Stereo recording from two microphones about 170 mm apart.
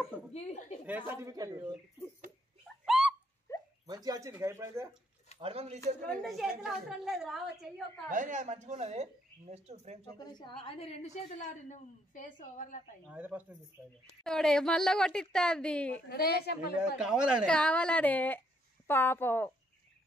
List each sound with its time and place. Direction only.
0.3 s a woman's voice: 40° left (ahead or behind)
0.8 s speech: 10° right (ahead or behind)
2.8 s a sound: centre (ahead or behind)
3.5 s a sound: 20° left (ahead or behind)
3.8 s speech: 25° right (ahead or behind)
5.4 s speech: 35° right (ahead or behind)
6.2 s a woman's voice: centre (ahead or behind)
8.1 s speech: 50° right (ahead or behind)
10.1 s a woman's voice: 25° left (ahead or behind); by 12.8 s 50° left (ahead or behind)
13.0 s speech: 10° right (ahead or behind)
14.2 s a woman's voice: 5° left (ahead or behind)
16.1 s a woman's voice: 65° left (ahead or behind)
17.0 s a woman's voice: 5° right (ahead or behind)
17.6 s speech: 5° left (ahead or behind)